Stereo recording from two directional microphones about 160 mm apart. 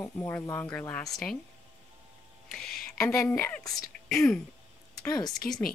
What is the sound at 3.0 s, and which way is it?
Speech, 10° left (ahead or behind).